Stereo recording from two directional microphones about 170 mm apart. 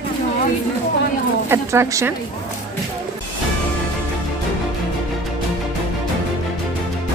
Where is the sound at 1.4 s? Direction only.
15° right (ahead or behind).